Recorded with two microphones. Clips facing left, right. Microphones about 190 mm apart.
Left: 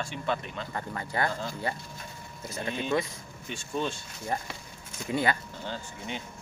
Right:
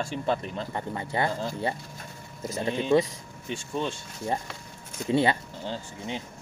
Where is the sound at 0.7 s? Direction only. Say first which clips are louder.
Right 2 dB; 20° right (ahead or behind).